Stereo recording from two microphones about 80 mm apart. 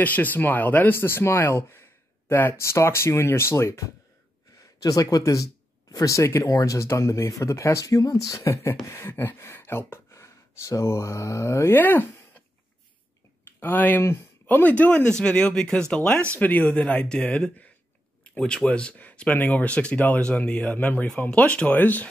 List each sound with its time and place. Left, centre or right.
0.0 s speech: left
4.8 s speech: left
13.6 s speech: left